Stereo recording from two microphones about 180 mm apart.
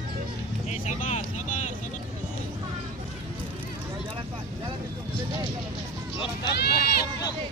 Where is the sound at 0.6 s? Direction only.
40° left (ahead or behind).